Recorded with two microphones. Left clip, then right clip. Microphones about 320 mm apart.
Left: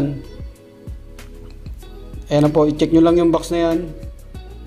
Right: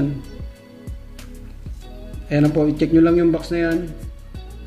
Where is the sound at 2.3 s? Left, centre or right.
Left.